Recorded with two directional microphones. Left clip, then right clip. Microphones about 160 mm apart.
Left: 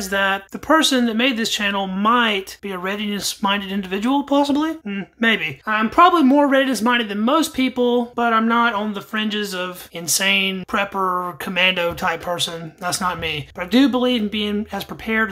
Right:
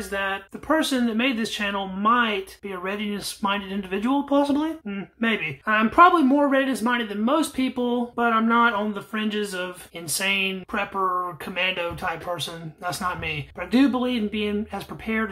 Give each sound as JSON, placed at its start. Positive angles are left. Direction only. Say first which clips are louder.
{"t": 0.1, "sound": "speech", "louder": "left 8 dB", "side_deg": 35}